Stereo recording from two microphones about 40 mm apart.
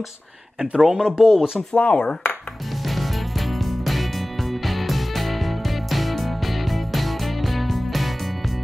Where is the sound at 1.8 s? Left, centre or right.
Left.